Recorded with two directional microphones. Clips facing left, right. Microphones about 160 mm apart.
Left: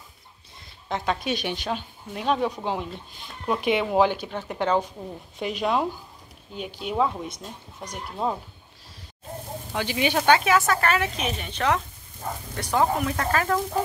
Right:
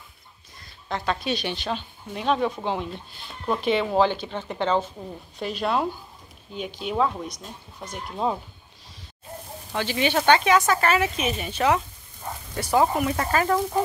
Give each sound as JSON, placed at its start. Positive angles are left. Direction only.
{"t": 0.8, "sound": "speech", "side_deg": 15}
{"t": 3.4, "sound": "speech", "side_deg": 15}
{"t": 9.7, "sound": "speech", "side_deg": 10}